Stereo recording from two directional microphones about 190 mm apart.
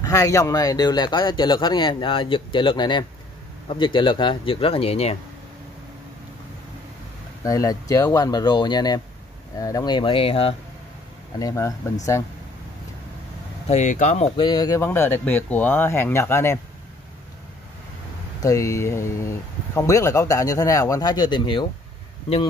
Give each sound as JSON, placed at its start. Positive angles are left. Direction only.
{"t": 0.0, "sound": "speech", "side_deg": 20}
{"t": 7.4, "sound": "speech", "side_deg": 15}
{"t": 11.3, "sound": "speech", "side_deg": 20}
{"t": 13.7, "sound": "speech", "side_deg": 40}
{"t": 14.3, "sound": "speech", "side_deg": 25}
{"t": 18.4, "sound": "speech", "side_deg": 15}